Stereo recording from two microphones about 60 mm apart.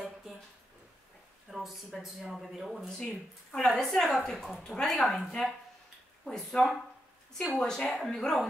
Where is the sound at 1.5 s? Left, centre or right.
Centre.